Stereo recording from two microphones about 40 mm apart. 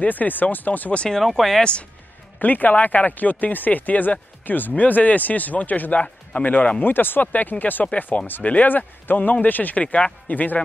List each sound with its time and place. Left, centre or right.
0.0 s speech: left
1.1 s speech: centre
1.6 s speech: left
2.3 s speech: left
6.8 s speech: left